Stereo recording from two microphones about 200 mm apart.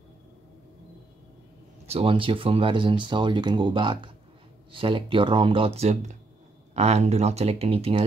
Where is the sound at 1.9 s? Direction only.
30° right (ahead or behind).